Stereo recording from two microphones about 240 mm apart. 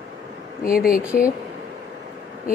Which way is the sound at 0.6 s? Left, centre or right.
Left.